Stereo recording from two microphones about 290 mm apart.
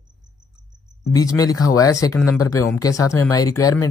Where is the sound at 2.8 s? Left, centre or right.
Centre.